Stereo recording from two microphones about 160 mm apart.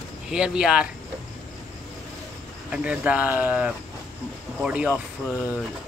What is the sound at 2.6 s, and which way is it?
Speech, 5° right (ahead or behind).